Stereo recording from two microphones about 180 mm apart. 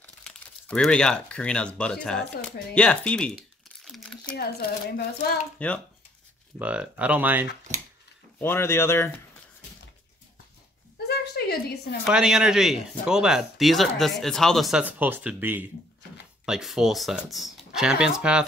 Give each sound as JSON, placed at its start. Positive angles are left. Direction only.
{"t": 0.0, "sound": "speech", "side_deg": 5}
{"t": 3.8, "sound": "crumpling", "side_deg": 0}
{"t": 4.4, "sound": "speech", "side_deg": 60}
{"t": 5.6, "sound": "speech", "side_deg": 5}
{"t": 6.6, "sound": "speech", "side_deg": -5}
{"t": 8.4, "sound": "speech", "side_deg": 10}
{"t": 11.1, "sound": "a sound", "side_deg": 65}
{"t": 12.1, "sound": "speech", "side_deg": -5}